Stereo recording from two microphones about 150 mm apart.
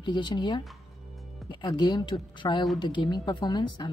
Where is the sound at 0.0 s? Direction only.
30° left (ahead or behind).